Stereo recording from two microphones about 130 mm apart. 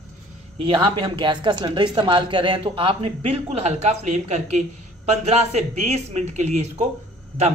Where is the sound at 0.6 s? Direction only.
40° right (ahead or behind).